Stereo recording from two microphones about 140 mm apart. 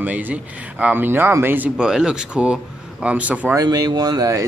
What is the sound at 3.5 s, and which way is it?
Speech, 30° right (ahead or behind).